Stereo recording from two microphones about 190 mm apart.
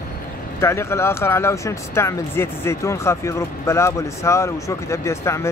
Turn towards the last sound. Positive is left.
turn(degrees=15)  # may be behind; listen again after turning